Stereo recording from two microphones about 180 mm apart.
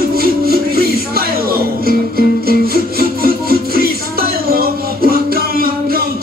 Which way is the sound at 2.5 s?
55° right (ahead or behind).